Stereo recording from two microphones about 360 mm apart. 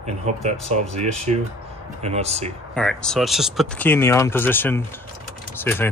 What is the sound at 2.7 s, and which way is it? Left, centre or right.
Speech, centre.